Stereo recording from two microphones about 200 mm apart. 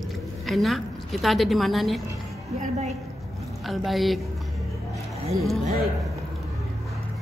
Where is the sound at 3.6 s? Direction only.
Centre (ahead or behind).